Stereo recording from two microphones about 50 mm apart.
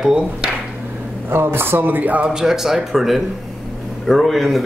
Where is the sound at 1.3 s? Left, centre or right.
Right.